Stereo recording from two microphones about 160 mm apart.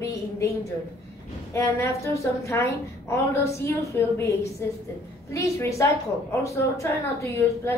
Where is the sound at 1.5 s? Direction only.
20° left (ahead or behind).